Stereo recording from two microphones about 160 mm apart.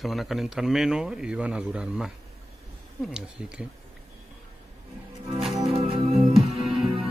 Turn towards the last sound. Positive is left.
turn(degrees=-5)  # may be behind; listen again after turning